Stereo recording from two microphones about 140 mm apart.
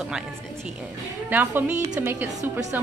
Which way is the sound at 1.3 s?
15° right (ahead or behind).